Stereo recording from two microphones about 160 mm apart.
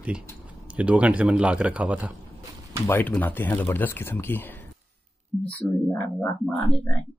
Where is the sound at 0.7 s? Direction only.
10° right (ahead or behind).